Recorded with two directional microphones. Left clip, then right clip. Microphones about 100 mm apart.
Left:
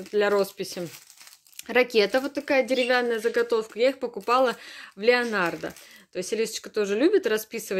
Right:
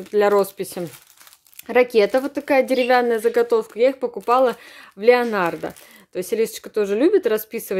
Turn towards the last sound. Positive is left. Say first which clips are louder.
# right 5 dB
turn(degrees=-30)  # may be behind; listen again after turning